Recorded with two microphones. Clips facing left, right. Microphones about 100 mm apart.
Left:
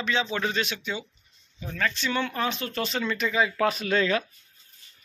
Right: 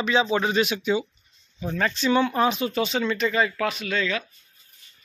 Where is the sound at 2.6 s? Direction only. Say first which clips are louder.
Right 5 dB; 5° right (ahead or behind).